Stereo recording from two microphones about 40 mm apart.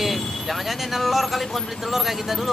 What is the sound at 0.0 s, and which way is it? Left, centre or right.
Speech, centre.